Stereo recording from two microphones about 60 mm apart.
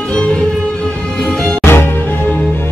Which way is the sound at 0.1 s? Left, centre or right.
Centre.